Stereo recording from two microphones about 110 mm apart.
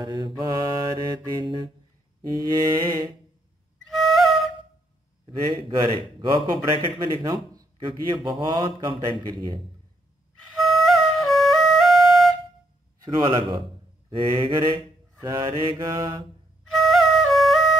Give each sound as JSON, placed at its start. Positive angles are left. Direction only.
{"t": 0.0, "sound": "a man's voice", "side_deg": -40}
{"t": 2.5, "sound": "mantra", "side_deg": -35}
{"t": 3.8, "sound": "flute", "side_deg": 0}
{"t": 5.6, "sound": "a man's voice", "side_deg": -50}
{"t": 10.4, "sound": "flute", "side_deg": 0}
{"t": 13.0, "sound": "a man's voice", "side_deg": -45}
{"t": 16.7, "sound": "flute", "side_deg": 0}